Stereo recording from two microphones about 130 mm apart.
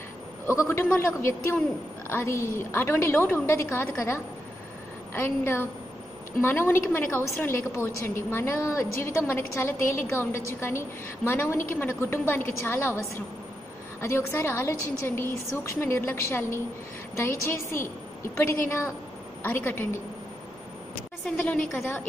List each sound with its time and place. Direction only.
0.5 s a woman's voice: 20° left (ahead or behind)
14.0 s a woman's voice: 20° left (ahead or behind)
21.3 s a woman's voice: 10° left (ahead or behind)